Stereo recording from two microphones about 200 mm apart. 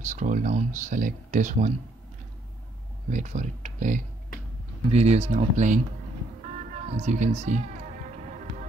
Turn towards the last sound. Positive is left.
turn(degrees=-35)  # may be behind; listen again after turning